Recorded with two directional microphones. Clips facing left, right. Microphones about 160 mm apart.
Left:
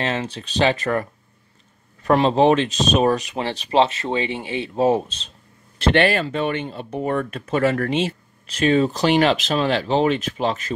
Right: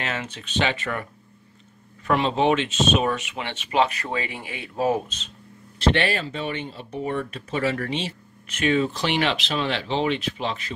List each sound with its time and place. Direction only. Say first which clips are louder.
0.0 s speech: left 6 dB; 30° left (ahead or behind)
2.0 s speech: left 5 dB; 40° left (ahead or behind)
5.8 s speech: left 4 dB; 60° left (ahead or behind)
8.5 s speech: left 4 dB; 35° left (ahead or behind)